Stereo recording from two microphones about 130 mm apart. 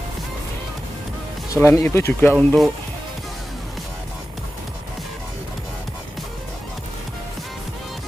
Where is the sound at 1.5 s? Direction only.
20° left (ahead or behind).